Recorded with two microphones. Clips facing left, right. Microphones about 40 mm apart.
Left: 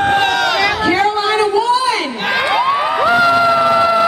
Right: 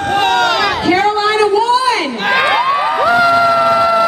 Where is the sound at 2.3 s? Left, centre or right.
Right.